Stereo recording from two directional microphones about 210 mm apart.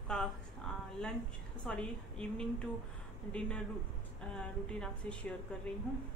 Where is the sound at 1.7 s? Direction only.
5° left (ahead or behind).